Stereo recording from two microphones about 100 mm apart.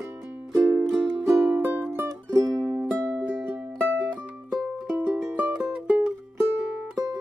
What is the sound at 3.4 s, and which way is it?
Music, 20° right (ahead or behind).